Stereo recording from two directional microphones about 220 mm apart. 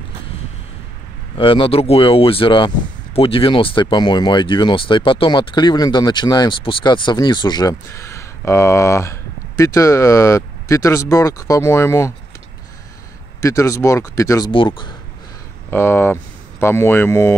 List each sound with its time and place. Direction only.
1.4 s speech: 25° left (ahead or behind)
13.4 s speech: 15° left (ahead or behind)
15.7 s speech: 10° left (ahead or behind)